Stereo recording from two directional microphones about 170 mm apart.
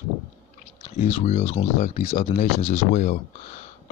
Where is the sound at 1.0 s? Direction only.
40° left (ahead or behind).